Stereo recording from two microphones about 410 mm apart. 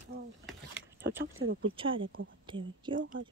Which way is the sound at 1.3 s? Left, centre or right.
Right.